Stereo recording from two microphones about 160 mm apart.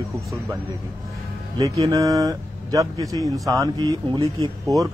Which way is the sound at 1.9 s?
20° right (ahead or behind).